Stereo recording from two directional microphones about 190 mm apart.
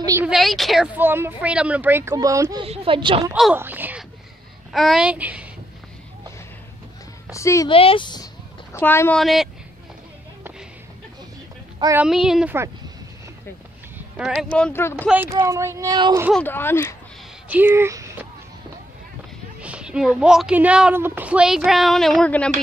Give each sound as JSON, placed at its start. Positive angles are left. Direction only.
{"t": 0.0, "sound": "a woman's voice", "side_deg": -15}
{"t": 0.3, "sound": "a woman's voice", "side_deg": 0}
{"t": 3.5, "sound": "a woman's voice", "side_deg": -10}
{"t": 7.3, "sound": "speech", "side_deg": 15}
{"t": 7.7, "sound": "speech", "side_deg": 30}
{"t": 8.7, "sound": "speech", "side_deg": 10}
{"t": 9.2, "sound": "a woman's voice", "side_deg": 0}
{"t": 12.0, "sound": "a woman's voice", "side_deg": -5}
{"t": 13.9, "sound": "speech", "side_deg": -5}
{"t": 15.0, "sound": "a woman's voice", "side_deg": -10}
{"t": 16.3, "sound": "speech", "side_deg": 10}
{"t": 17.5, "sound": "speech", "side_deg": -10}
{"t": 19.6, "sound": "a woman's voice", "side_deg": -5}